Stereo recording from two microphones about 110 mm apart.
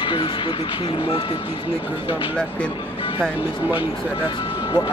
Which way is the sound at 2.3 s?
10° left (ahead or behind).